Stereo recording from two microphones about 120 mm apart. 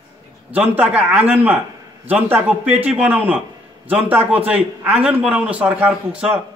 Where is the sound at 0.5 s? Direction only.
15° right (ahead or behind).